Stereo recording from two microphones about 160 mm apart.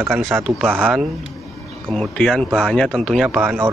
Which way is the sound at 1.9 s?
5° left (ahead or behind).